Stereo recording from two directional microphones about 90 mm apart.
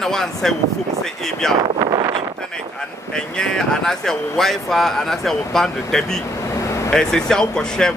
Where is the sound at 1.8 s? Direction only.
50° right (ahead or behind).